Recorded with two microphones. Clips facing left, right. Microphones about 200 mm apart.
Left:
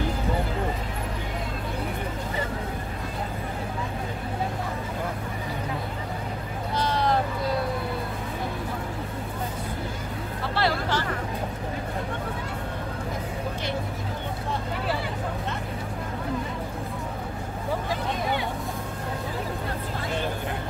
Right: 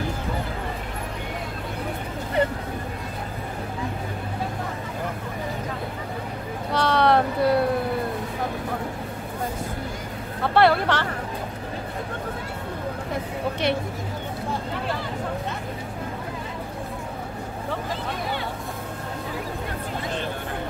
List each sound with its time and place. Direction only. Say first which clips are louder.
6.7 s vehicle: right 5 dB; 70° right (ahead or behind)
10.4 s vehicle: right 8 dB; 55° right (ahead or behind)